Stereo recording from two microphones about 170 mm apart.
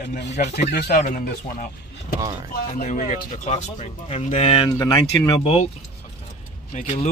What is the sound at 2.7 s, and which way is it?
Speech, 40° left (ahead or behind).